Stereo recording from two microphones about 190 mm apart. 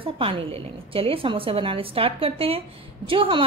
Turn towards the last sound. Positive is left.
turn(degrees=-25)  # may be behind; listen again after turning